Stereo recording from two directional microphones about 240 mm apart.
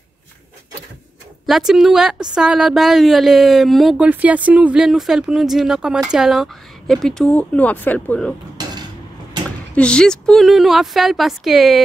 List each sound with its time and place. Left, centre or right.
1.4 s speech: centre
8.6 s a sound: centre
9.8 s speech: centre